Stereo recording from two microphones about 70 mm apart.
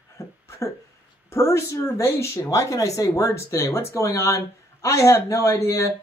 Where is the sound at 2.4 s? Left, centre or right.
Left.